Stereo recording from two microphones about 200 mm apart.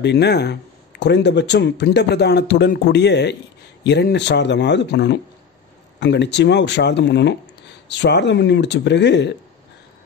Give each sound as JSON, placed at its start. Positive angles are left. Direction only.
{"t": 0.0, "sound": "speech", "side_deg": 55}